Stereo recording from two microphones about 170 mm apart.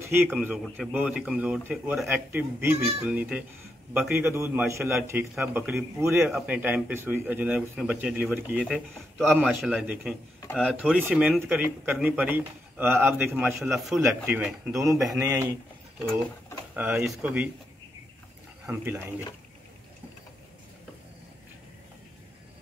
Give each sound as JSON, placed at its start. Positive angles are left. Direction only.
{"t": 0.0, "sound": "a man's voice", "side_deg": -15}
{"t": 2.0, "sound": "a man's voice", "side_deg": -15}
{"t": 13.3, "sound": "speech", "side_deg": 0}
{"t": 15.1, "sound": "a man's voice", "side_deg": -15}
{"t": 16.7, "sound": "a man's voice", "side_deg": -5}
{"t": 18.7, "sound": "a man's voice", "side_deg": -15}